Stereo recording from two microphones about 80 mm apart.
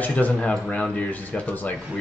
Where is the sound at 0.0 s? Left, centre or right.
Centre.